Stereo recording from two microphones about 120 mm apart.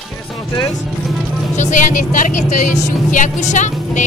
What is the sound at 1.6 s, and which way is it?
Speech, 85° left.